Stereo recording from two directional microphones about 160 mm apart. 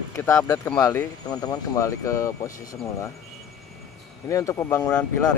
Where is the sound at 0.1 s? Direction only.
15° left (ahead or behind).